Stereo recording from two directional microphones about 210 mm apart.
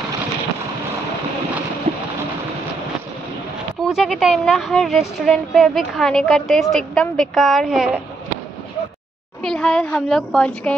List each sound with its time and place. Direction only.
1.9 s a sound: 30° right (ahead or behind)
3.8 s a woman's voice: centre (ahead or behind)
9.4 s a woman's voice: 5° left (ahead or behind)